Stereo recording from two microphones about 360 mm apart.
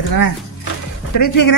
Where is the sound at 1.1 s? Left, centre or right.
Left.